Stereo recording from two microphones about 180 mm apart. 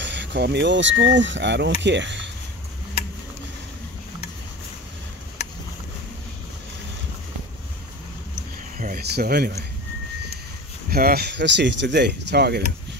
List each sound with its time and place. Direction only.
0.0 s speech: 80° right
8.7 s speech: 55° right (ahead or behind)
10.9 s speech: 55° right (ahead or behind)